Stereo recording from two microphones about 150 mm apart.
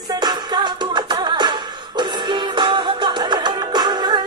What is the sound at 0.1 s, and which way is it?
Music, 30° right (ahead or behind).